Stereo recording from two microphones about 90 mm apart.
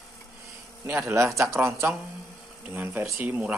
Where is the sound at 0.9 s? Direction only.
30° right (ahead or behind).